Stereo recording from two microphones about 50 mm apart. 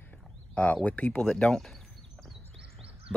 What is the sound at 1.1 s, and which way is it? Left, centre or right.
Speech, centre.